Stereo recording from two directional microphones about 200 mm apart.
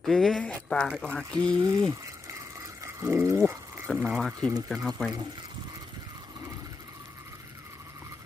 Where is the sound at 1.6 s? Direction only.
15° right (ahead or behind).